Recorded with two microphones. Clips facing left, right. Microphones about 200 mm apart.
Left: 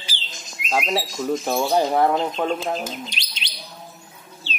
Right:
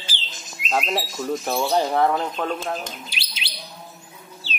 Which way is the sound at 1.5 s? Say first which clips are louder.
Left 1 dB; 10° left (ahead or behind).